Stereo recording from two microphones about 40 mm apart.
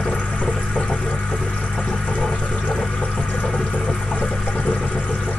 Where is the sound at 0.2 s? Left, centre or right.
Left.